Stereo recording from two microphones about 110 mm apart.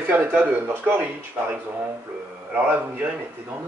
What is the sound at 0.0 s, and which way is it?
Speech, 15° right (ahead or behind).